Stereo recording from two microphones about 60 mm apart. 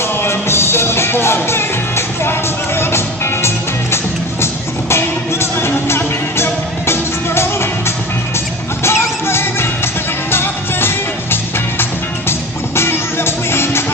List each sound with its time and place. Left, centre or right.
0.2 s music: left
8.8 s music: left